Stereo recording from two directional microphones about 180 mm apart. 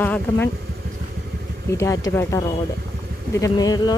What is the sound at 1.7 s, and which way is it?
Speech, 15° left (ahead or behind).